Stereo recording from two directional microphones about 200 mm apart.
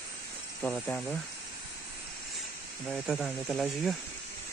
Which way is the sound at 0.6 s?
5° left (ahead or behind).